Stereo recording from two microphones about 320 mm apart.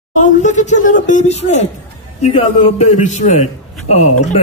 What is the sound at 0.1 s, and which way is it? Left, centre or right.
A man's voice, left.